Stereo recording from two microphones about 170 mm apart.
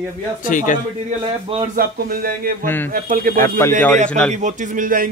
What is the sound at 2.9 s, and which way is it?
Speech, 55° right (ahead or behind).